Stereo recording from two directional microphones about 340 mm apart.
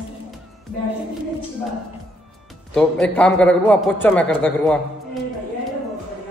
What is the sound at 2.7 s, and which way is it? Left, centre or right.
A man's voice, centre.